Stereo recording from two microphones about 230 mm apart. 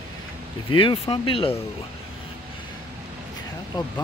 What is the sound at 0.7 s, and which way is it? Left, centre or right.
Speech, left.